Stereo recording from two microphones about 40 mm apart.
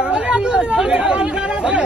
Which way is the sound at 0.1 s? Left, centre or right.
Right.